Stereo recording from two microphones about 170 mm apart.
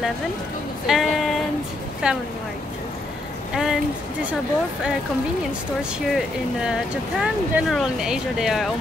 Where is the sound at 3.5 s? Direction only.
5° right (ahead or behind).